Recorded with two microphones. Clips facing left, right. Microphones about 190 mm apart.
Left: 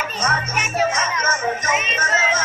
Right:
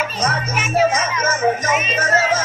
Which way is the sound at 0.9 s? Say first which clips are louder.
Right 3 dB; 35° right (ahead or behind).